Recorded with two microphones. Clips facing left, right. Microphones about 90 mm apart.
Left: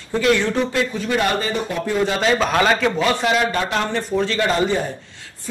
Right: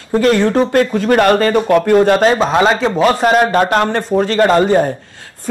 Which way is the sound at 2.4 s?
25° right (ahead or behind).